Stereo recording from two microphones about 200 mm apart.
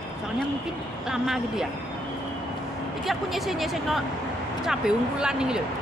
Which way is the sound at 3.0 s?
Centre (ahead or behind).